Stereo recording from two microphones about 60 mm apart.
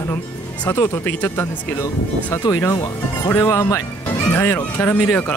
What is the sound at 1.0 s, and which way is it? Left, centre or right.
Speech, left.